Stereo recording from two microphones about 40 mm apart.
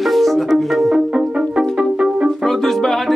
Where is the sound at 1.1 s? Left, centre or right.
Right.